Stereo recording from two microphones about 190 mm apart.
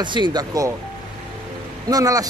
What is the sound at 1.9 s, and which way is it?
Speech, 20° right (ahead or behind).